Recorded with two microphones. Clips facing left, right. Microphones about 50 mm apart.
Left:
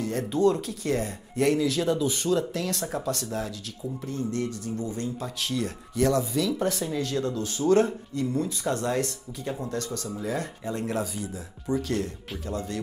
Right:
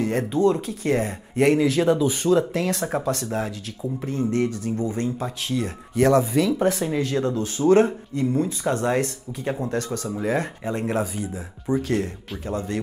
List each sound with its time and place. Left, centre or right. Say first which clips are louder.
0.0 s speech: right 3 dB; right